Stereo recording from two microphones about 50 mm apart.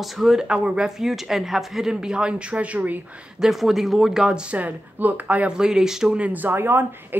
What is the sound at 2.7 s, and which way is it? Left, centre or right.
Speech, right.